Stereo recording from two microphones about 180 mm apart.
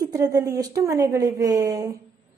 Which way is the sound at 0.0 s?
20° right (ahead or behind).